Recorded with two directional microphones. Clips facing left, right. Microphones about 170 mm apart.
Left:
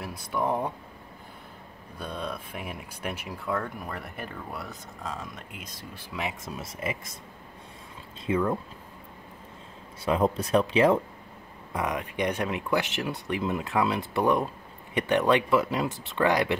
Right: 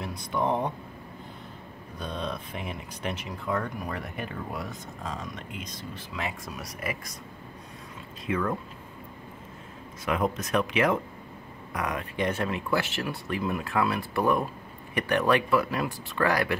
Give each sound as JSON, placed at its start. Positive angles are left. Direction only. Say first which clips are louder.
{"t": 0.0, "sound": "speech", "louder": "right 1 dB", "side_deg": 5}
{"t": 2.0, "sound": "speech", "louder": "right 1 dB", "side_deg": 5}
{"t": 5.0, "sound": "speech", "louder": "even", "side_deg": 5}
{"t": 6.1, "sound": "speech", "louder": "left 2 dB", "side_deg": 20}
{"t": 8.3, "sound": "speech", "louder": "left 3 dB", "side_deg": 25}
{"t": 10.0, "sound": "speech", "louder": "left 3 dB", "side_deg": 30}
{"t": 11.7, "sound": "speech", "louder": "left 2 dB", "side_deg": 20}